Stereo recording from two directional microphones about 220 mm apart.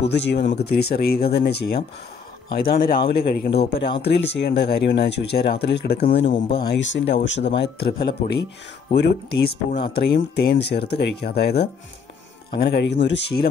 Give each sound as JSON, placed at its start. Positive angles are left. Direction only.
{"t": 0.1, "sound": "speech", "side_deg": 55}